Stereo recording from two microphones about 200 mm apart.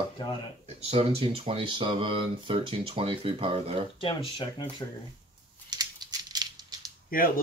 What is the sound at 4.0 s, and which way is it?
Speech, 25° left (ahead or behind).